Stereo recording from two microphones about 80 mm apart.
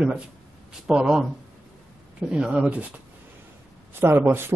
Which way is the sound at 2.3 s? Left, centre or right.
Centre.